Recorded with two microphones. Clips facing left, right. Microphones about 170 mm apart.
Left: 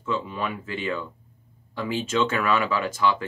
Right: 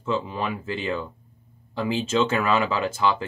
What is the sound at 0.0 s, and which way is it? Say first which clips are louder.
Speech: right 2 dB; 30° right (ahead or behind).